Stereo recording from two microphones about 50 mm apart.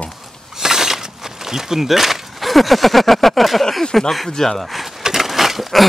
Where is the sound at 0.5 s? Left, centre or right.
Centre.